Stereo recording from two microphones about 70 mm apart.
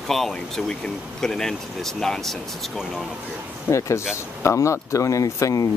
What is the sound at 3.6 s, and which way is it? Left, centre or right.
Speech, left.